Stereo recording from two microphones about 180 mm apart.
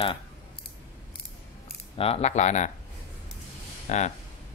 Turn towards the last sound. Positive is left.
turn(degrees=40)  # may be behind; listen again after turning